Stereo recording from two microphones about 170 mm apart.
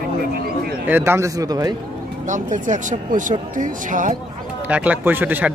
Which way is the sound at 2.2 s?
45° right (ahead or behind).